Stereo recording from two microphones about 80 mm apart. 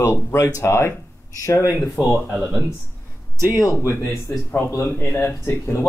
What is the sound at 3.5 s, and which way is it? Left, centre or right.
Speech, left.